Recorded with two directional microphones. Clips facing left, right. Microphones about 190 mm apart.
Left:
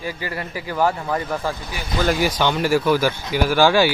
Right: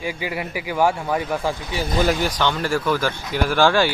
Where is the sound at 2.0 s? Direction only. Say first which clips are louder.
Left 4 dB; 5° left (ahead or behind).